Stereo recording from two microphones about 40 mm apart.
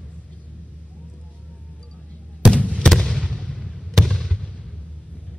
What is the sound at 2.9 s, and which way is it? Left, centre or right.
Fireworks, centre.